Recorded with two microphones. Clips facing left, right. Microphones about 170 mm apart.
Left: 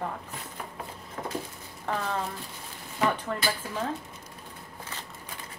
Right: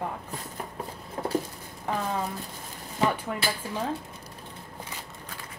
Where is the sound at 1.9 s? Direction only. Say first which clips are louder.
Right 1 dB; 10° right (ahead or behind).